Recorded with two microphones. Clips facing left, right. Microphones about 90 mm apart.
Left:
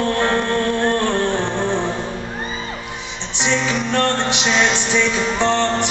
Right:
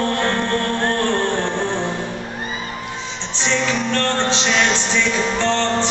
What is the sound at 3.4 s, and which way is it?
Music, 15° left (ahead or behind).